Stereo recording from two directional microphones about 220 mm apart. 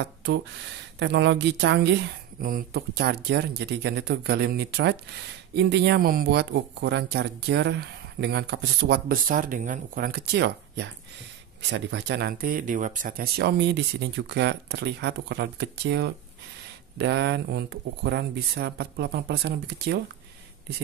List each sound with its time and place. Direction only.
0.0 s speech: 55° right (ahead or behind)